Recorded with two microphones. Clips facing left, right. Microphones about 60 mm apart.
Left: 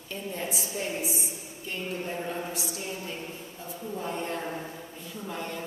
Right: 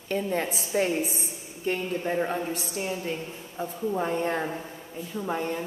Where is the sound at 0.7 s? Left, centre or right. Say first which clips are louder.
Right 10 dB; right.